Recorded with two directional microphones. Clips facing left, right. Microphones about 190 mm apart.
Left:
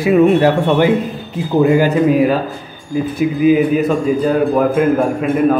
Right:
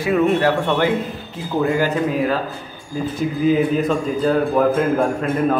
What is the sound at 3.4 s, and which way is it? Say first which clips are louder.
A man's voice: left 5 dB; 10° left (ahead or behind).